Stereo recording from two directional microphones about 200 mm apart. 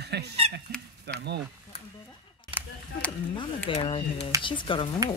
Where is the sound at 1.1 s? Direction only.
55° right (ahead or behind).